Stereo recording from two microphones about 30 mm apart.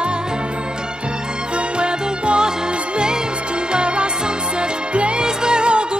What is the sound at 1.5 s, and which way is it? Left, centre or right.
Music, right.